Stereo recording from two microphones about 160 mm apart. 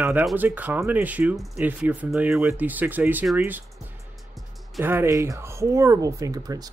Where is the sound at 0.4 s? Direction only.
10° right (ahead or behind).